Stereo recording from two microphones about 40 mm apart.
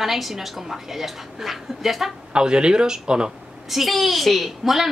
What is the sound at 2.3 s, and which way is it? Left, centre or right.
A man's voice, right.